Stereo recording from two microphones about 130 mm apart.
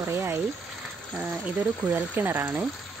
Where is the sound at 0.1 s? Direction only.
20° right (ahead or behind).